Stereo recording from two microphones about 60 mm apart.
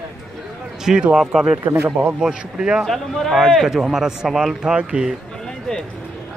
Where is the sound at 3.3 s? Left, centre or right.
Centre.